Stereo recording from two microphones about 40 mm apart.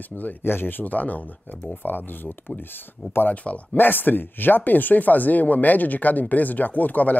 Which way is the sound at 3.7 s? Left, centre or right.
Left.